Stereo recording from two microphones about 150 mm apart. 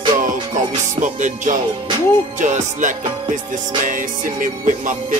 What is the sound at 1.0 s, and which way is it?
Music, 60° right (ahead or behind).